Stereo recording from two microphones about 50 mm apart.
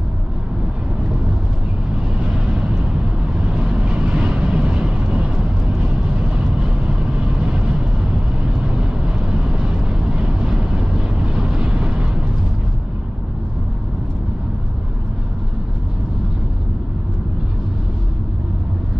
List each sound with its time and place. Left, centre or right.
2.1 s vehicle: centre